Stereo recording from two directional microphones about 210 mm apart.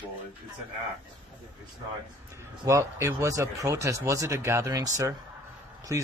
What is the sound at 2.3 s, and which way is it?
Speech, 15° right (ahead or behind).